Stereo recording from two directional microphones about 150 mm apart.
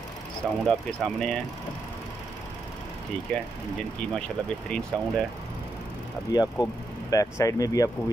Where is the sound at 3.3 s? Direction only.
5° left (ahead or behind).